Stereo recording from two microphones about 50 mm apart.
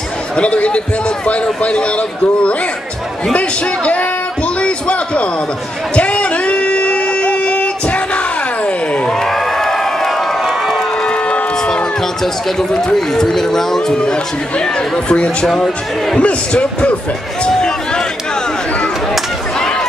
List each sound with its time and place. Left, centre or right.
0.4 s a man's voice: left
4.6 s a sound: left
9.2 s crowd: centre
11.1 s crowd: left
12.5 s speech: centre
15.4 s speech: centre
16.2 s a man's voice: left
17.6 s a sound: centre